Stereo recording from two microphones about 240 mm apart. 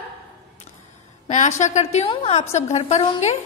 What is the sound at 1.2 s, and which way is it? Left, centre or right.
A woman's voice, left.